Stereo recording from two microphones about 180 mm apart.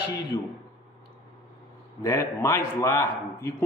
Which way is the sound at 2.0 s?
15° left (ahead or behind).